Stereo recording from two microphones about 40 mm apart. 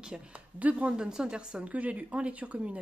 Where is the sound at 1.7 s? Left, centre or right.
Right.